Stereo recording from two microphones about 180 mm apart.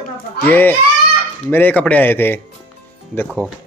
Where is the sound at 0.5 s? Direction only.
10° left (ahead or behind).